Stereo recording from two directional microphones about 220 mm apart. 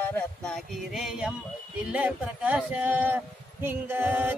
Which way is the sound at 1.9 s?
5° right (ahead or behind).